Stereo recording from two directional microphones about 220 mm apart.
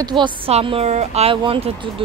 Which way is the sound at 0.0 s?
20° right (ahead or behind).